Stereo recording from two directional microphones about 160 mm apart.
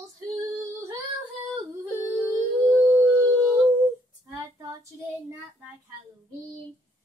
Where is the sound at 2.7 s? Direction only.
15° right (ahead or behind).